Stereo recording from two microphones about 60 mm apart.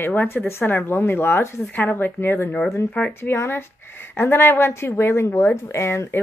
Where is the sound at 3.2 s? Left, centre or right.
Left.